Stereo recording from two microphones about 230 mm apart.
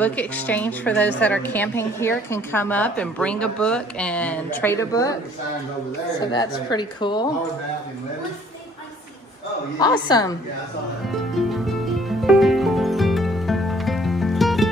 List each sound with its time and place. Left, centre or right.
0.0 s a woman's voice: centre
6.1 s a woman's voice: centre
9.8 s a woman's voice: centre
11.4 s music: centre